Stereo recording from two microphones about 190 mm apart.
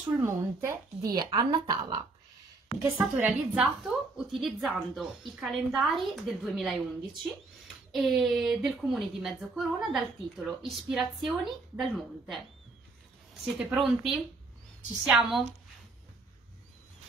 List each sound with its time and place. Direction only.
0.2 s a woman's voice: 15° right (ahead or behind)
2.8 s speech: 5° right (ahead or behind)
13.5 s speech: centre (ahead or behind)